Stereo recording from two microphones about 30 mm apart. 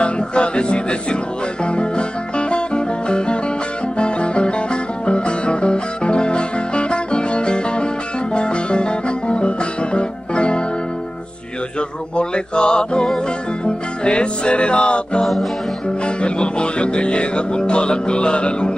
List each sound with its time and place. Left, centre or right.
0.0 s music: left
12.2 s mantra: left
14.0 s music: left